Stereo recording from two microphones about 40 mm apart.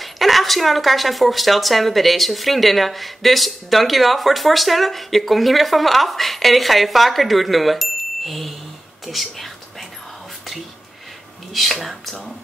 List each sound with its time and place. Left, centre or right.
0.0 s speech: centre
9.0 s whispering: centre
11.5 s speech: centre